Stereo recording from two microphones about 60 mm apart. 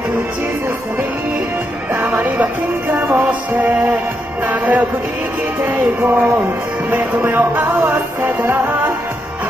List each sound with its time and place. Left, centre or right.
2.2 s music: right